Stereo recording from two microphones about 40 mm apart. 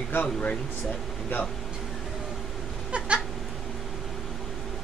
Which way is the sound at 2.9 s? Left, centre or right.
Right.